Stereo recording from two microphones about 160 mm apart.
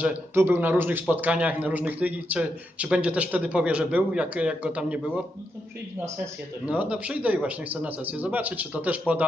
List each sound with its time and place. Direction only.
0.0 s a man's voice: 15° right (ahead or behind)
6.6 s a man's voice: 10° right (ahead or behind)